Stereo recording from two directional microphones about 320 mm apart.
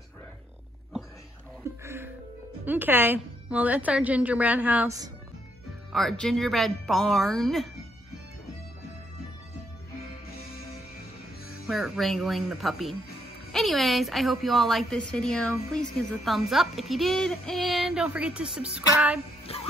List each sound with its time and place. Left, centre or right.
1.6 s music: centre
2.6 s speech: centre
5.9 s speech: centre
11.6 s speech: centre
19.5 s music: centre